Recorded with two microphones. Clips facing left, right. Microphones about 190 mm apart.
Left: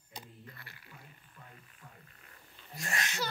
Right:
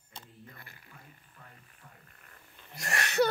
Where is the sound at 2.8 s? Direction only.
70° right (ahead or behind).